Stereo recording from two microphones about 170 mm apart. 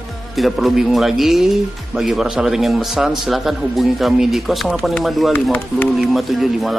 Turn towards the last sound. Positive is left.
turn(degrees=0)  # may be behind; listen again after turning